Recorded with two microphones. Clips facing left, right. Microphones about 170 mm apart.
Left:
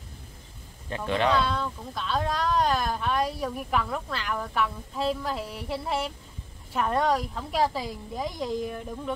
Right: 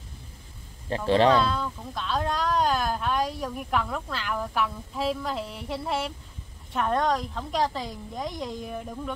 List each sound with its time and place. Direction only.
0.8 s a man's voice: 35° right (ahead or behind)
1.3 s speech: centre (ahead or behind)